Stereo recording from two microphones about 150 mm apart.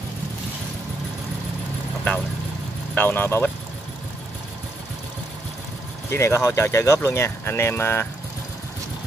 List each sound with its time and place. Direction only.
2.9 s speech: 10° left (ahead or behind)
6.0 s speech: 20° left (ahead or behind)